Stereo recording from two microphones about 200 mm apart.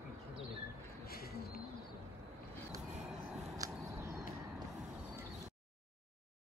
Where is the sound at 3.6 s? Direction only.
15° right (ahead or behind).